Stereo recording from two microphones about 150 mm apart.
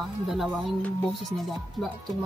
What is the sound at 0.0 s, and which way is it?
Speech, centre (ahead or behind).